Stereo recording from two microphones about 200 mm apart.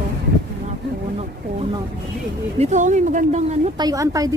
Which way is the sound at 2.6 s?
35° right (ahead or behind).